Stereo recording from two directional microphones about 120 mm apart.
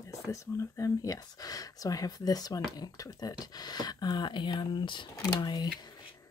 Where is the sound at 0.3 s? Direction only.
25° left (ahead or behind).